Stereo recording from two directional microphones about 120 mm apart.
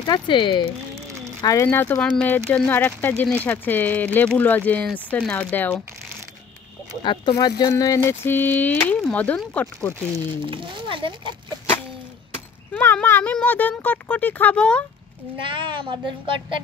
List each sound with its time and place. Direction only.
0.0 s speech: 40° left (ahead or behind)
1.4 s a sound: 30° left (ahead or behind)
1.7 s speech: 15° left (ahead or behind)
7.0 s speech: 40° left (ahead or behind)
7.7 s a sound: 25° left (ahead or behind)
9.1 s speech: 15° left (ahead or behind)
10.2 s speech: 45° right (ahead or behind)
12.7 s speech: 15° left (ahead or behind)
15.4 s speech: 40° right (ahead or behind)